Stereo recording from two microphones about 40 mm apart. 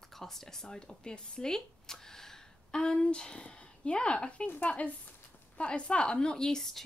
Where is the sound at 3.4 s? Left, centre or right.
Left.